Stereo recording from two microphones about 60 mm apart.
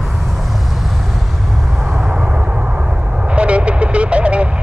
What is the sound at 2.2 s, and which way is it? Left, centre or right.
Vehicle, centre.